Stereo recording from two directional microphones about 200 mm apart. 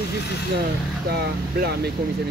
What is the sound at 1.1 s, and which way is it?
Speech, 55° right (ahead or behind).